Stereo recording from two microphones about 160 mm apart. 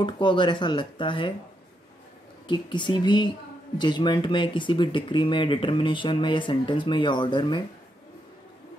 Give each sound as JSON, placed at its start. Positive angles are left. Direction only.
{"t": 0.0, "sound": "speech", "side_deg": 30}
{"t": 2.4, "sound": "speech", "side_deg": 30}